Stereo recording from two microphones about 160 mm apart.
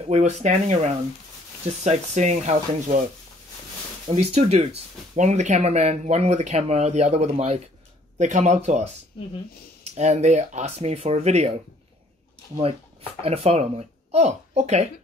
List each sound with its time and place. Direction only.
0.0 s speech: 45° right (ahead or behind)
4.1 s speech: 40° right (ahead or behind)
9.9 s speech: 45° right (ahead or behind)
13.2 s speech: 40° right (ahead or behind)